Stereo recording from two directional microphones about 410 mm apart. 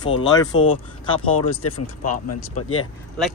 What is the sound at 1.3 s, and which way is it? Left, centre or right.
Speech, left.